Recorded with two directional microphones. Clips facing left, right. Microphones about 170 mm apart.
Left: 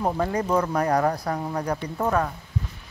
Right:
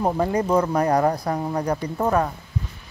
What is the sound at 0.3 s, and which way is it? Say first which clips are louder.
Speech: right 3 dB; 30° right (ahead or behind).